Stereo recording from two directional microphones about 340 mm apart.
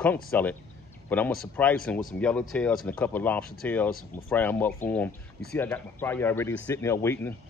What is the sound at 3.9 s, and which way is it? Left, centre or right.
Speech, left.